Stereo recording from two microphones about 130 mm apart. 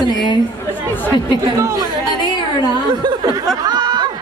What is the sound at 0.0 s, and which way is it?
Chatter, 30° left (ahead or behind).